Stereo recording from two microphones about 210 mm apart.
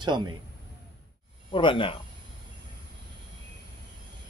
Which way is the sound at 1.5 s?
25° left (ahead or behind).